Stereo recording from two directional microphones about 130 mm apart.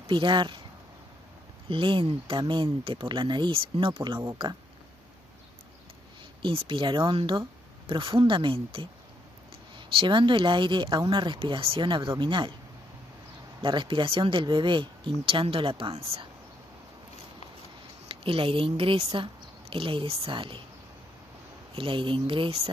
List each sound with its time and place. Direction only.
0.0 s speech: 40° right (ahead or behind)
1.7 s speech: 40° right (ahead or behind)
6.4 s speech: 45° right (ahead or behind)
13.6 s speech: 40° right (ahead or behind)
18.0 s speech: 45° right (ahead or behind)
21.7 s speech: 40° right (ahead or behind)